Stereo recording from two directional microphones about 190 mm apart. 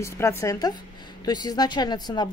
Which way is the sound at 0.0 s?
15° left (ahead or behind).